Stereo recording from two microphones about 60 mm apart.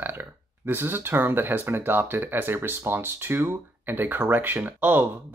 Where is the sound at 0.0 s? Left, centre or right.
Right.